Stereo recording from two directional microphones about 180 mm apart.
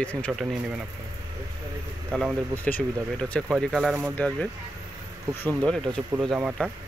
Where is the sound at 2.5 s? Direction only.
10° left (ahead or behind).